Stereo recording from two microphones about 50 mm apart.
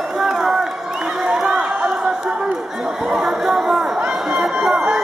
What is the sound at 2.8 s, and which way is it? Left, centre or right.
Chatter, centre.